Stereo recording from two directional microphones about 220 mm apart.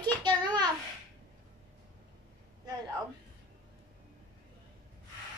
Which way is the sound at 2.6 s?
15° right (ahead or behind).